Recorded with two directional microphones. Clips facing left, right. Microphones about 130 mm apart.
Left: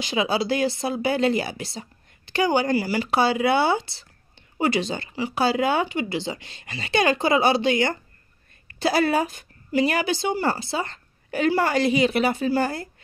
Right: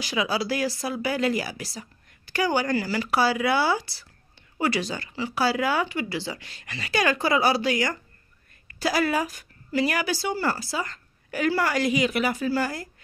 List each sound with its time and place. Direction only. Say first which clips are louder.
0.0 s speech: left 3 dB; 25° left (ahead or behind)